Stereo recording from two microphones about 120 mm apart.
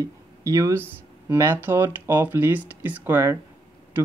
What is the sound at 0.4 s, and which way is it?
Speech, 30° right (ahead or behind).